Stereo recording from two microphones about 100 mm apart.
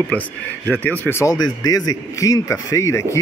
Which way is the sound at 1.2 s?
40° left (ahead or behind).